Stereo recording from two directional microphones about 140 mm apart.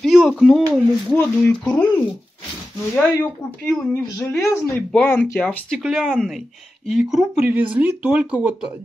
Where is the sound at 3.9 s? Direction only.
20° left (ahead or behind).